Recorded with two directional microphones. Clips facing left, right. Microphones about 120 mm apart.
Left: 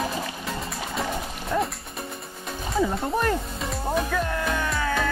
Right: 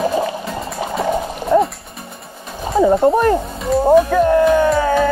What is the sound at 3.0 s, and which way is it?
Music, 35° right (ahead or behind).